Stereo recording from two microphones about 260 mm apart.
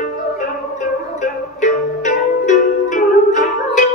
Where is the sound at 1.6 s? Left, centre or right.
Left.